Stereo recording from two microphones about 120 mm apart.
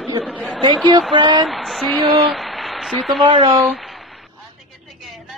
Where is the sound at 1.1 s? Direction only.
40° right (ahead or behind).